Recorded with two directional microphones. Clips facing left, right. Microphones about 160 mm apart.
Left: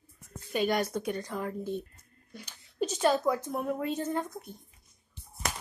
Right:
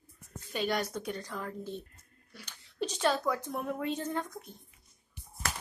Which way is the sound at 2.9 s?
10° left (ahead or behind).